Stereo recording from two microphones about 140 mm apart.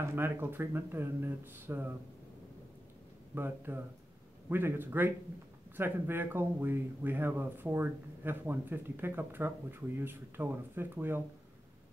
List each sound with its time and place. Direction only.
0.0 s speech: 15° right (ahead or behind)
3.3 s speech: 15° right (ahead or behind)